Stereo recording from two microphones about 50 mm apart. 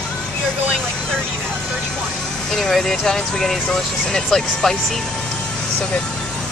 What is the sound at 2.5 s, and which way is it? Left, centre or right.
Speech, centre.